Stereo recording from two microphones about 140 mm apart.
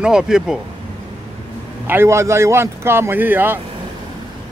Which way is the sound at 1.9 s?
20° right (ahead or behind).